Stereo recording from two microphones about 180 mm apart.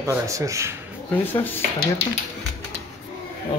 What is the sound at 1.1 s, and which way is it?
Speech, 10° left (ahead or behind).